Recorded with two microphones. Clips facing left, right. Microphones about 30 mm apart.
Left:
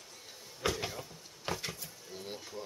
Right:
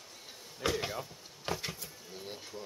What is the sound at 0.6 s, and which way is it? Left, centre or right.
Speech, centre.